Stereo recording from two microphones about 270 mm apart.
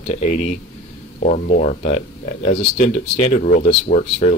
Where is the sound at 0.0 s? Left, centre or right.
Left.